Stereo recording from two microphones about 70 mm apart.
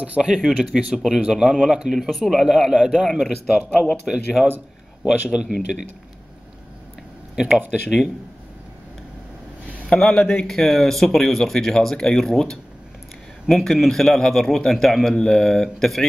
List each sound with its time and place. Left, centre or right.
0.0 s speech: centre
0.4 s a man's voice: centre
7.3 s speech: centre
9.8 s a man's voice: centre